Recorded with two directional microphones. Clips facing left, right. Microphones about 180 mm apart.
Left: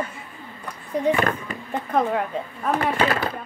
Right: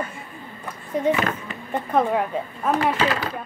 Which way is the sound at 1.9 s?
5° right (ahead or behind).